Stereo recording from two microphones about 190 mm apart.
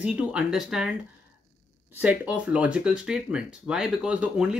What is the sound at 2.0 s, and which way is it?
Speech, 5° right (ahead or behind).